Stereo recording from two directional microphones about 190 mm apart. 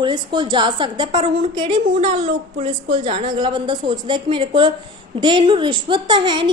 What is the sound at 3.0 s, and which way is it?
Speech, 35° right (ahead or behind).